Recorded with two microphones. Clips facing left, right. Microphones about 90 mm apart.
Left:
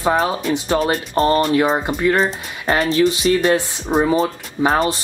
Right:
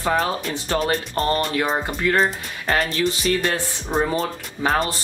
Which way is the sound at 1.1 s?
30° left (ahead or behind).